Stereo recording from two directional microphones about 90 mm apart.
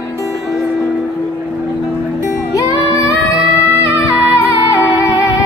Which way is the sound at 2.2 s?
40° left (ahead or behind).